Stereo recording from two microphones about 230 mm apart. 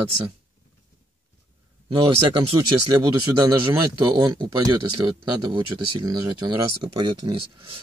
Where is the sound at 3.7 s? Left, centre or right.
Centre.